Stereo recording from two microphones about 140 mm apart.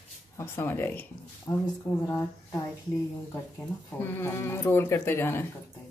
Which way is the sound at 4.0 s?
15° left (ahead or behind).